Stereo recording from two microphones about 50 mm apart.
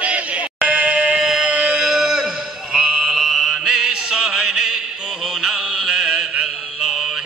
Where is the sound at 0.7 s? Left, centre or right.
Right.